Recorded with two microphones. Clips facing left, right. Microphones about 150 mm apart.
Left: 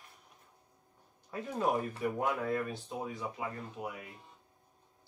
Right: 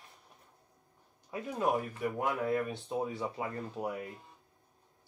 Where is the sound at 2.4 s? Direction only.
20° right (ahead or behind).